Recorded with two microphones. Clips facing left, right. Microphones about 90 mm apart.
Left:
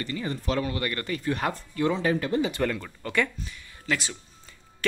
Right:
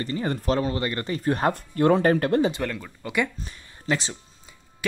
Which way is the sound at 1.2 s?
40° right (ahead or behind).